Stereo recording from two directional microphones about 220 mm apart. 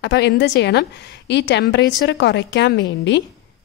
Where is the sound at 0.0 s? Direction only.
50° left (ahead or behind).